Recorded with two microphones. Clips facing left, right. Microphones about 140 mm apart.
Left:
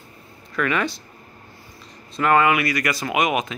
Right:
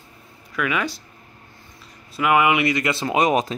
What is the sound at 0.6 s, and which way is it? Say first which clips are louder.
Speech: left 1 dB; 5° right (ahead or behind).